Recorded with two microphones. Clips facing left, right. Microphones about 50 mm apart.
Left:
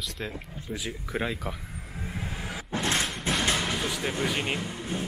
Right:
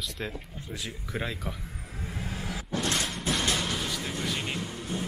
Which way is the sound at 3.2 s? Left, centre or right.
Left.